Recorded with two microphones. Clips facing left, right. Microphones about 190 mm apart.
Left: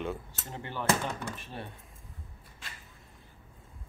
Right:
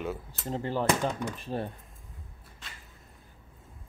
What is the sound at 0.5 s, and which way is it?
Speech, 35° right (ahead or behind).